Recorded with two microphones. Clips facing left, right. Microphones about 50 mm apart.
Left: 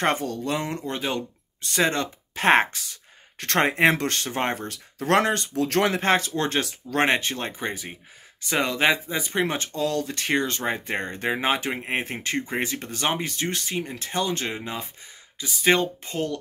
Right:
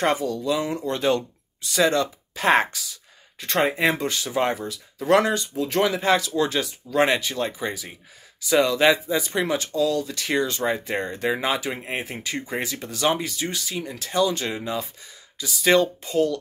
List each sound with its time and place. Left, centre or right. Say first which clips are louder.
0.0 s speech: right 2 dB; left
3.3 s speech: left 1 dB; left
4.6 s speech: right 3 dB; left
5.6 s speech: even; left
6.1 s speech: right 1 dB; left
9.8 s speech: right 3 dB; left